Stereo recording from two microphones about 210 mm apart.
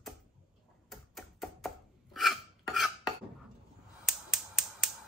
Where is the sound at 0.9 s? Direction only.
Centre (ahead or behind).